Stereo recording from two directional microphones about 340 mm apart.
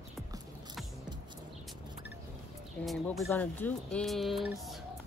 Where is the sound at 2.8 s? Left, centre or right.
Centre.